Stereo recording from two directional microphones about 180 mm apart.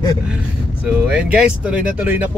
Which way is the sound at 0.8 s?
5° right (ahead or behind).